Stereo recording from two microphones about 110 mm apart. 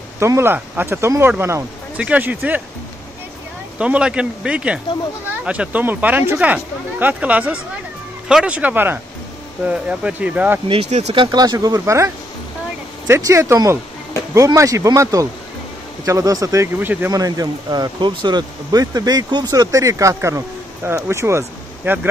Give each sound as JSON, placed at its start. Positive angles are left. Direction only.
{"t": 0.2, "sound": "speech", "side_deg": -25}
{"t": 3.7, "sound": "speech", "side_deg": -10}
{"t": 10.7, "sound": "speech", "side_deg": -75}
{"t": 11.1, "sound": "speech", "side_deg": -40}
{"t": 17.1, "sound": "speech", "side_deg": -35}